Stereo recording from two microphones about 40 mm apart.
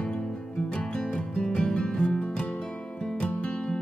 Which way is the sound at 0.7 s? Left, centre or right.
Left.